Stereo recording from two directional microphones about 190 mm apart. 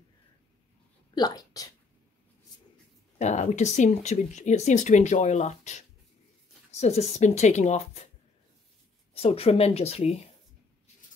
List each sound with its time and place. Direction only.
1.1 s speech: 20° left (ahead or behind)
3.2 s speech: 35° left (ahead or behind)
9.1 s speech: 30° left (ahead or behind)